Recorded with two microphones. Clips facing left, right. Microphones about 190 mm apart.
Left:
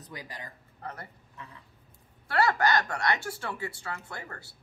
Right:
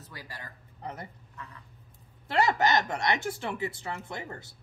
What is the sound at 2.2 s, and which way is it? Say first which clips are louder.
Speech: even; 20° right (ahead or behind).